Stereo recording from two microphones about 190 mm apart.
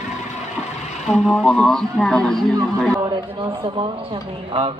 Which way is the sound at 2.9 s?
25° right (ahead or behind).